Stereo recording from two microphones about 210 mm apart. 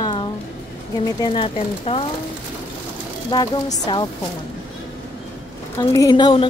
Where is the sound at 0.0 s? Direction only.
20° left (ahead or behind).